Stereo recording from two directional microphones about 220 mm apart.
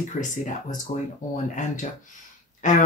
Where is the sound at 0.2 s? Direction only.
30° left (ahead or behind).